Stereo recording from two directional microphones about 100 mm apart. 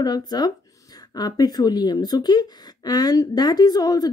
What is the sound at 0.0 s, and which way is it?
Speech, 45° left (ahead or behind).